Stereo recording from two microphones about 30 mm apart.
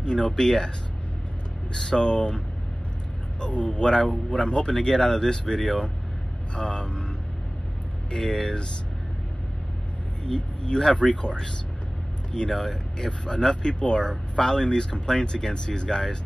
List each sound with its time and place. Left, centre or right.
0.0 s speech: left
1.8 s speech: left
8.1 s speech: left
10.2 s speech: left
12.4 s speech: centre